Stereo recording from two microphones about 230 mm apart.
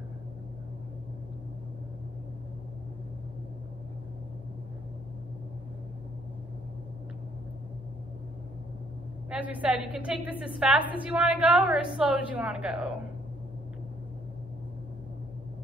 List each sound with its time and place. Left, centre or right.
9.3 s a woman's voice: centre